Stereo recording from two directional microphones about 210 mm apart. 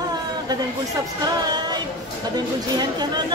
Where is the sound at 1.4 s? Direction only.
20° right (ahead or behind).